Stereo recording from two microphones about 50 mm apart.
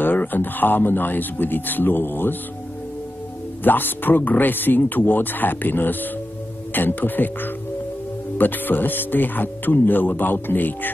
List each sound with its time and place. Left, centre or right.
0.0 s speech: left
3.6 s speech: left